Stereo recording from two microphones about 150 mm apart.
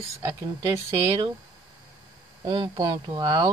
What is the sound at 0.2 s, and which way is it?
Speech, 20° right (ahead or behind).